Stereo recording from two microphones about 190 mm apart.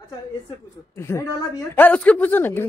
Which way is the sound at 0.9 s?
15° left (ahead or behind).